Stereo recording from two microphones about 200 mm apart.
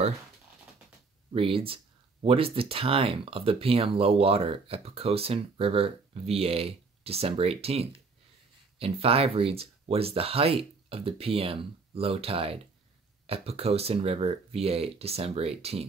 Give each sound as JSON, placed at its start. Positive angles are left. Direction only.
{"t": 1.3, "sound": "speech", "side_deg": -25}